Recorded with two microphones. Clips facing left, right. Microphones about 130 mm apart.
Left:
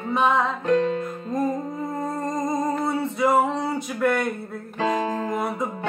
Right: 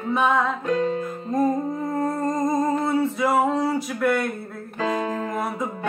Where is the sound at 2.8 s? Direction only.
Centre (ahead or behind).